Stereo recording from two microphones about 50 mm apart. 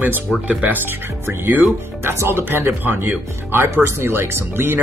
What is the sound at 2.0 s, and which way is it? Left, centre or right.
Speech, right.